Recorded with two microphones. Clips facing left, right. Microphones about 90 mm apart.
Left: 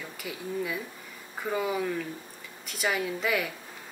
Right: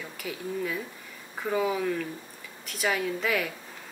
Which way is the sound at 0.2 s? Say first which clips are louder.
Right 1 dB; 5° left (ahead or behind).